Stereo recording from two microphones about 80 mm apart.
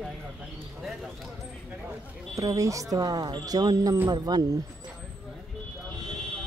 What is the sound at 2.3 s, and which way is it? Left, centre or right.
Speech, right.